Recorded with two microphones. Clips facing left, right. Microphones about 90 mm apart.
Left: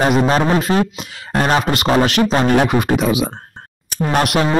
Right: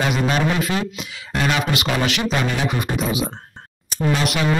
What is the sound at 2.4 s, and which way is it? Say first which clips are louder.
Speech: left 8 dB; 60° left (ahead or behind).